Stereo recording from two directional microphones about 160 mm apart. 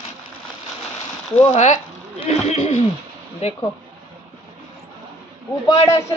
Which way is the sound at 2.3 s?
40° left (ahead or behind).